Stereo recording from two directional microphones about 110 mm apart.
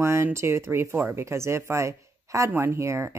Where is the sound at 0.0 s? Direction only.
25° right (ahead or behind).